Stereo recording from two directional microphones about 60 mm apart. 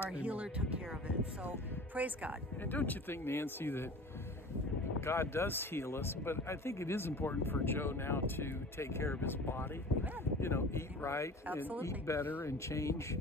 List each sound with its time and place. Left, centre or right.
0.1 s speech: right
2.6 s speech: left
5.0 s speech: left
12.2 s speech: left
12.4 s speech: left